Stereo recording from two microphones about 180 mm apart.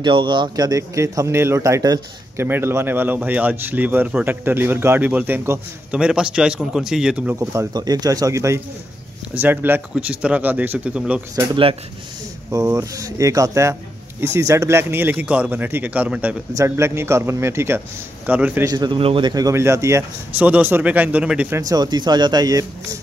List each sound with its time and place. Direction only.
0.0 s speech: 25° right (ahead or behind); by 11.2 s 5° right (ahead or behind)
11.3 s speech: 30° right (ahead or behind)
12.4 s speech: 15° right (ahead or behind)
18.7 s speech: 25° right (ahead or behind)